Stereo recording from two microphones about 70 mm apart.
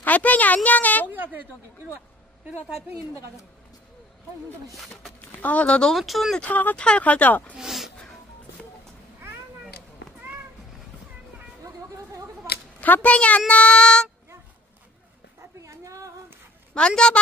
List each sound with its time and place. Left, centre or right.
0.0 s a sound: left
1.1 s a sound: right
4.7 s speech: centre
5.2 s speech: left
5.9 s speech: centre
6.4 s speech: left
7.5 s speech: centre
11.6 s a sound: right
12.8 s speech: left
13.5 s child singing: centre
15.6 s a sound: right
16.7 s child singing: centre